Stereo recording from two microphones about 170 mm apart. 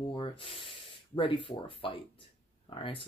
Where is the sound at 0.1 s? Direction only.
30° left (ahead or behind).